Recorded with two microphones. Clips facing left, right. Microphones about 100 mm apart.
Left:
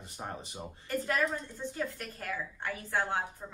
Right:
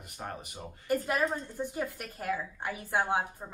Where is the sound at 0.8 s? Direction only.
15° right (ahead or behind).